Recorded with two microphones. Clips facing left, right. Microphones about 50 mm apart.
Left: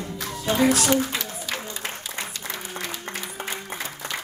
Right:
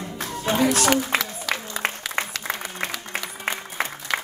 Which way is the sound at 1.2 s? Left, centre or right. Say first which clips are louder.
Right 3 dB; right.